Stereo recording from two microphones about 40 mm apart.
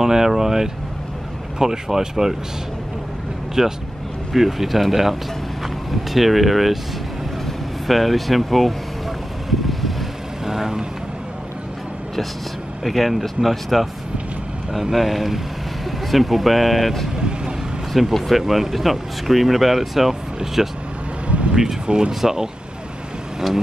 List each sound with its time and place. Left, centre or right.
0.0 s speech: centre
3.6 s speech: centre
9.5 s vehicle: centre
10.4 s vehicle: centre
12.8 s speech: centre
21.3 s vehicle: right
21.8 s speech: right
22.2 s speech: centre